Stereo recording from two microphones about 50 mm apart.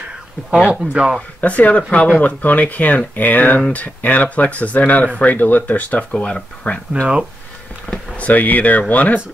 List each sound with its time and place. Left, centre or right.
0.7 s speech: centre
1.4 s speech: left
7.8 s a sound: centre
8.2 s speech: left